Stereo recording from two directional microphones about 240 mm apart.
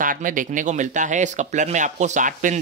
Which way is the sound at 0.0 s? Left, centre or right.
Right.